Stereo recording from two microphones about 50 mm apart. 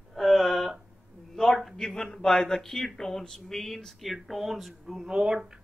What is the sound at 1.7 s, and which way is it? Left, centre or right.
Speech, centre.